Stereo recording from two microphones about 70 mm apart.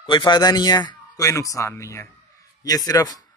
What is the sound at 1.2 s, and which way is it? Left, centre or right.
Speech, left.